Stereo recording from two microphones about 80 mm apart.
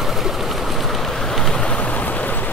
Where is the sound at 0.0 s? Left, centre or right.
Centre.